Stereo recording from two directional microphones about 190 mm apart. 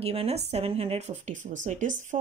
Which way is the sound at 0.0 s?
30° right (ahead or behind).